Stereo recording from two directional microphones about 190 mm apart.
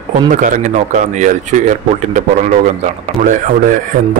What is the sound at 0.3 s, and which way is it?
A man's voice, 45° right (ahead or behind).